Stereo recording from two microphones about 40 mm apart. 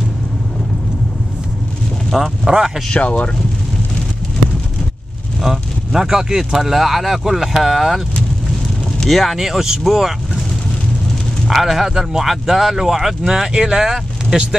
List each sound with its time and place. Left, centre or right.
2.0 s a sound: centre
2.5 s speech: right
3.0 s speech: left
5.9 s speech: centre
9.0 s speech: centre
9.4 s speech: centre
11.4 s speech: centre